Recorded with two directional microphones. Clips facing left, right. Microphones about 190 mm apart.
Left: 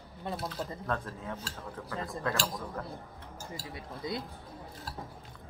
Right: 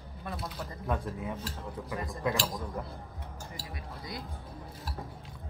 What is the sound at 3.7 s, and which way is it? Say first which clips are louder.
Speech: left 6 dB; 25° left (ahead or behind).